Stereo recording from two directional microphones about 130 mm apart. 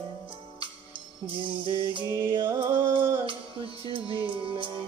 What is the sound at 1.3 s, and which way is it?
Music, 40° right (ahead or behind).